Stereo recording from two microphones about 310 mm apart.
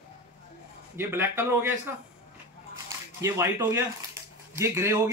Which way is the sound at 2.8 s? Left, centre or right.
Centre.